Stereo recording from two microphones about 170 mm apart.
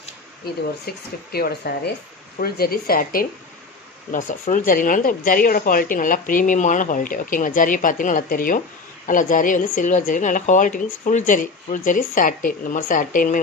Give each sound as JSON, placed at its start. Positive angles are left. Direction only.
{"t": 0.8, "sound": "speech", "side_deg": 65}